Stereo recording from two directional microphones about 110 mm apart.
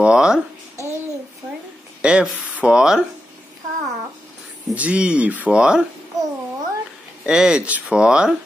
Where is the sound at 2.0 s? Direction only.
10° right (ahead or behind).